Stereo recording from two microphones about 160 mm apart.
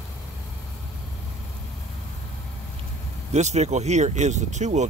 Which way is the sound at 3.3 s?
45° right (ahead or behind).